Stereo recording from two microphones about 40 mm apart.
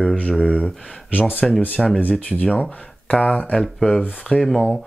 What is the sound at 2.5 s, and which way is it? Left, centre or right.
Speech, left.